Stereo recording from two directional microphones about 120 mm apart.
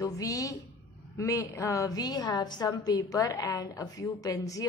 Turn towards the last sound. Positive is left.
turn(degrees=30)  # may be behind; listen again after turning